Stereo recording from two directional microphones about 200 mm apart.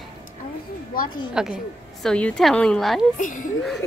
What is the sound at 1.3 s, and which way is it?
A woman's voice, centre (ahead or behind).